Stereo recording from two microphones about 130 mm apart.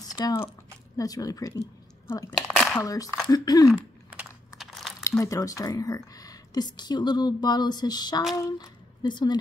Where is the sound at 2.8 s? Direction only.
25° left (ahead or behind).